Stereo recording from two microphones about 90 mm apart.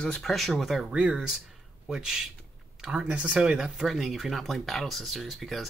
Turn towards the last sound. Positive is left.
turn(degrees=0)  # may be behind; listen again after turning